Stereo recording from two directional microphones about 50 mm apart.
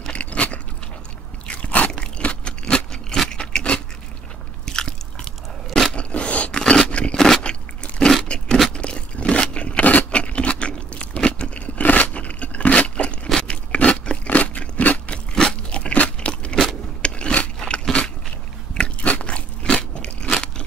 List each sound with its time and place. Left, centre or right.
0.1 s biting: left
1.9 s a sound: centre
3.3 s biting: centre
4.6 s biting: centre
5.9 s a sound: left
6.7 s scrape: left
7.2 s vehicle: centre
7.4 s biting: centre
8.3 s scrape: centre
8.6 s a sound: centre
13.4 s crunch: left
17.0 s biting: left
20.0 s crunch: centre